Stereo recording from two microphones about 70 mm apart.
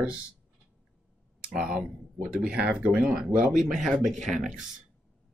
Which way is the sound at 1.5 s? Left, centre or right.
Centre.